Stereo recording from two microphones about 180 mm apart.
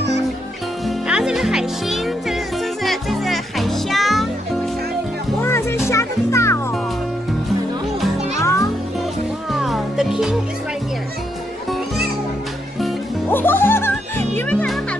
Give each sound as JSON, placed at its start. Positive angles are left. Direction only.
{"t": 0.8, "sound": "music", "side_deg": -5}
{"t": 5.4, "sound": "music", "side_deg": 15}
{"t": 8.4, "sound": "music", "side_deg": 15}
{"t": 9.5, "sound": "music", "side_deg": 0}
{"t": 13.3, "sound": "music", "side_deg": 10}